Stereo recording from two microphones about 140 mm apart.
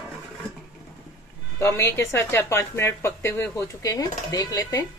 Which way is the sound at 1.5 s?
20° left (ahead or behind).